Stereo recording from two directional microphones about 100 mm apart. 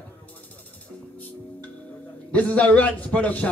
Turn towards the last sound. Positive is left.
turn(degrees=15)  # may be behind; listen again after turning